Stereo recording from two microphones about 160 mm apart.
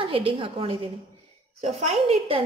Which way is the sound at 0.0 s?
35° right (ahead or behind).